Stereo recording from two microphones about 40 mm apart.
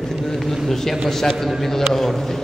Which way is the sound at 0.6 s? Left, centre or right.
Centre.